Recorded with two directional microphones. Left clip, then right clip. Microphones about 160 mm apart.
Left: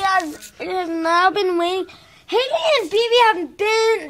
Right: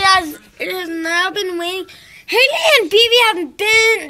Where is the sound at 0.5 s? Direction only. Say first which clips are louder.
Right 1 dB; 10° left (ahead or behind); by 1.9 s 30° left (ahead or behind).